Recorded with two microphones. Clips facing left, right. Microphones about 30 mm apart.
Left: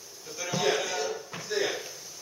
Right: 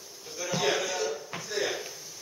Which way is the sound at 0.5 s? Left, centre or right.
Centre.